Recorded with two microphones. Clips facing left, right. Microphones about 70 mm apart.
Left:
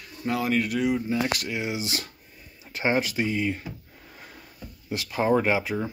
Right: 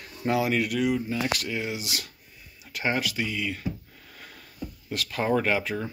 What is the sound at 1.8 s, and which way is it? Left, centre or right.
Speech, left.